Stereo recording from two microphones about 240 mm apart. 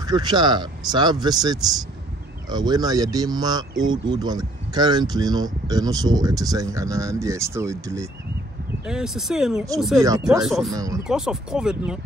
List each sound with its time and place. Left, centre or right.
0.0 s speech: centre
9.9 s speech: centre
10.4 s speech: centre
10.7 s speech: centre
11.1 s speech: centre